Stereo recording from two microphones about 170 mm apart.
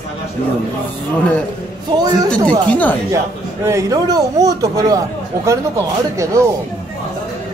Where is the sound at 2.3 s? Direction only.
5° left (ahead or behind).